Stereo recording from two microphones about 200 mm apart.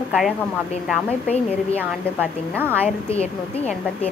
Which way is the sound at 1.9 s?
10° right (ahead or behind).